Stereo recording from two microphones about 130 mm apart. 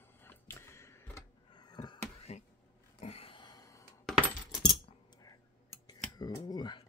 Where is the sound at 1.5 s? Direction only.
35° left (ahead or behind).